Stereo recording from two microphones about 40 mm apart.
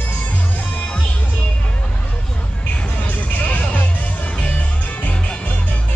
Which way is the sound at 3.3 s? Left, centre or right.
Left.